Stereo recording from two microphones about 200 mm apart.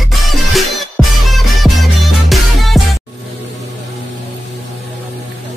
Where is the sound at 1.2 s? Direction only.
Centre (ahead or behind).